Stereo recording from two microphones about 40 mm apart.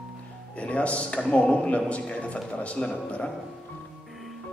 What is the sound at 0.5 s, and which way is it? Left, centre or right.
A man's voice, left.